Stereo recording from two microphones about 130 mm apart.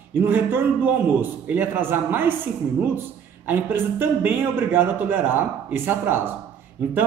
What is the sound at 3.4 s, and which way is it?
A man's voice, 15° right (ahead or behind).